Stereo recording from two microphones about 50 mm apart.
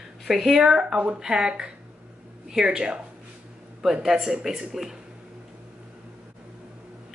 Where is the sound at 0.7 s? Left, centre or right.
Centre.